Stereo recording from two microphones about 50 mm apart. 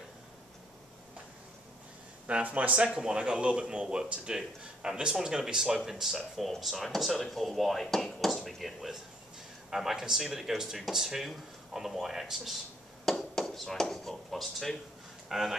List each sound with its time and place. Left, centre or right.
2.2 s speech: right; by 12.5 s centre
13.0 s a sound: centre
15.2 s speech: centre